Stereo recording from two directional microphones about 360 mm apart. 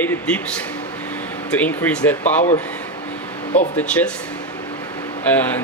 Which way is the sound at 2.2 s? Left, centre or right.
Centre.